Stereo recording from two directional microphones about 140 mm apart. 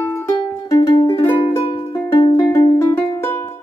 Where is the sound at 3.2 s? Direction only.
15° left (ahead or behind).